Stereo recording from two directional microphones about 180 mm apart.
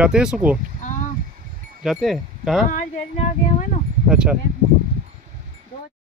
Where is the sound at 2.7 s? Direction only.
40° left (ahead or behind).